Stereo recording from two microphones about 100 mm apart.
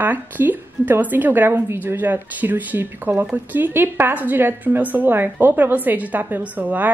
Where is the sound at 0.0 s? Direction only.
20° right (ahead or behind).